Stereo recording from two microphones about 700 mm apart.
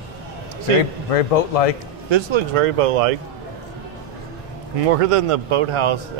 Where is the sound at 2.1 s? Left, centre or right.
Right.